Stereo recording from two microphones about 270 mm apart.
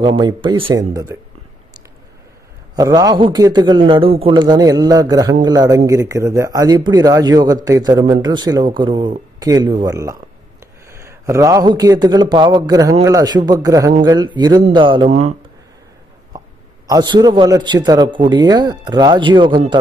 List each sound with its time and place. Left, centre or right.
0.0 s a man's voice: centre
2.7 s a man's voice: centre
16.3 s a man's voice: centre